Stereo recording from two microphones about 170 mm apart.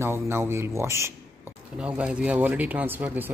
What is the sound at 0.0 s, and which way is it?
Speech, 15° right (ahead or behind).